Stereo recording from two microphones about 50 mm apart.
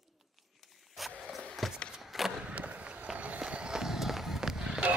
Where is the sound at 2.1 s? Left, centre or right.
Centre.